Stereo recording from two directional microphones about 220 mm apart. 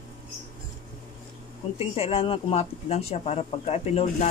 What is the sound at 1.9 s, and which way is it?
Speech, 25° left (ahead or behind).